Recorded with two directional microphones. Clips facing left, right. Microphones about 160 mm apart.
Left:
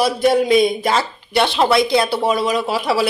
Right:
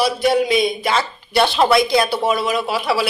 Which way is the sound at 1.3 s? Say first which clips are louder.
Right 1 dB; 20° left (ahead or behind).